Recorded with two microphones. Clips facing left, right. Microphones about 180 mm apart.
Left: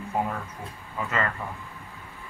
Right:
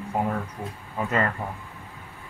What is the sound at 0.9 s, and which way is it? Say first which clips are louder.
Speech: right 3 dB; 35° right (ahead or behind).